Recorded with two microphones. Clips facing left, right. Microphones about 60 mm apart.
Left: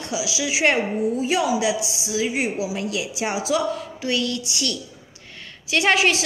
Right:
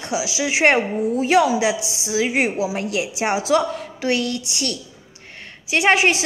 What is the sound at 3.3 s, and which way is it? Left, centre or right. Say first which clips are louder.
A woman's voice: right 3 dB; right.